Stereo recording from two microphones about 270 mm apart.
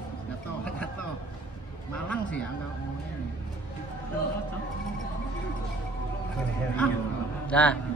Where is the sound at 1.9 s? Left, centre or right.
Centre.